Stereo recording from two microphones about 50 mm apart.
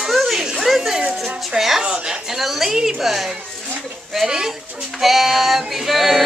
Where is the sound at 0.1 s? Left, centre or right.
Centre.